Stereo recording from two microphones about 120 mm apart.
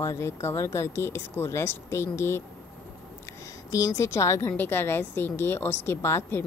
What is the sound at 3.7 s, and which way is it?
A woman's voice, 25° left (ahead or behind).